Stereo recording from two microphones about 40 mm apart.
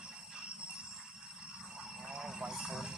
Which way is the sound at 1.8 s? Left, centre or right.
Centre.